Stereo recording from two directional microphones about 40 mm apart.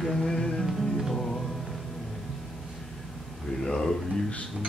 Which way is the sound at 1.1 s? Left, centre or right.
Centre.